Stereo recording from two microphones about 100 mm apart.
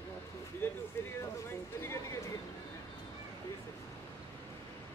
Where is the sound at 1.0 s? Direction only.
25° left (ahead or behind).